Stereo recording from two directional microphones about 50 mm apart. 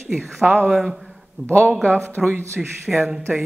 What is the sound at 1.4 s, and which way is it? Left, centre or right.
Speech, right.